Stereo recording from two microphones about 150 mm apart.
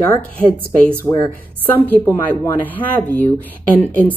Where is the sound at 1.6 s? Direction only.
10° left (ahead or behind).